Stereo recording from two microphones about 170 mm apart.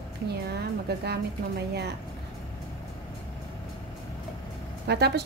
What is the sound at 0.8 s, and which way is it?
Speech, 75° right (ahead or behind).